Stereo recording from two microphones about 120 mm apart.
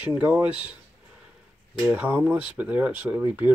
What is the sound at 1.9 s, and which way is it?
Speech, 10° right (ahead or behind).